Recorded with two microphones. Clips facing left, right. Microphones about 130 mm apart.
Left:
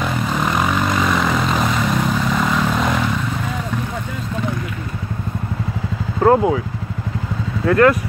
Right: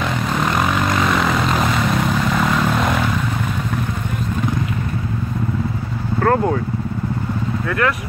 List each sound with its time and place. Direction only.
0.0 s vehicle: centre (ahead or behind)
6.2 s speech: 10° left (ahead or behind)
7.6 s speech: 35° left (ahead or behind)